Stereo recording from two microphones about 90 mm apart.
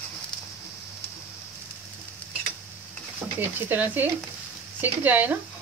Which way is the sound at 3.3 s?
20° right (ahead or behind).